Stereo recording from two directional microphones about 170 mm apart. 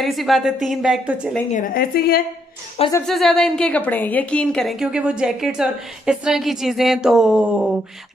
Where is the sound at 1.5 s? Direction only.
55° left (ahead or behind).